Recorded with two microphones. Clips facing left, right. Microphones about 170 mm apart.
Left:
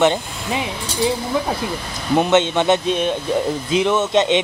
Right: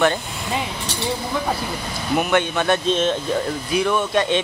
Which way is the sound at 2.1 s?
25° left (ahead or behind).